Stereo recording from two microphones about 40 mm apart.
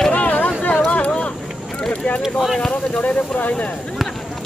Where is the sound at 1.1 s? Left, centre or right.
Left.